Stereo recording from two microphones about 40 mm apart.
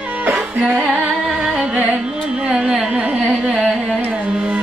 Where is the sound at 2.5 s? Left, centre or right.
Centre.